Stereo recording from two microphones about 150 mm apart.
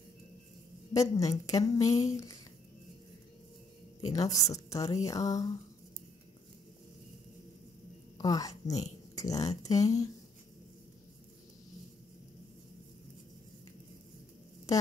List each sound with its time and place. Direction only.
0.9 s a woman's voice: 25° left (ahead or behind)
4.0 s a woman's voice: 25° left (ahead or behind)
8.2 s a woman's voice: 25° left (ahead or behind)